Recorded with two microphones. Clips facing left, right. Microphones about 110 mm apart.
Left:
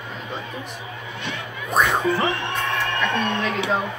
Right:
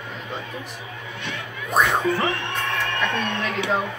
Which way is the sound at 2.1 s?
30° left (ahead or behind).